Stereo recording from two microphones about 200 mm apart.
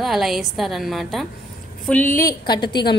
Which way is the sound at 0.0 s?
Centre (ahead or behind).